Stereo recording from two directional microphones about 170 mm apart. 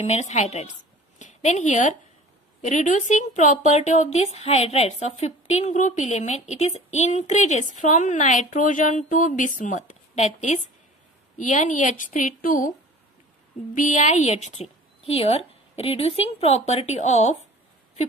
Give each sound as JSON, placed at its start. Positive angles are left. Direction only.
{"t": 0.0, "sound": "a woman's voice", "side_deg": 40}
{"t": 13.7, "sound": "a woman's voice", "side_deg": 45}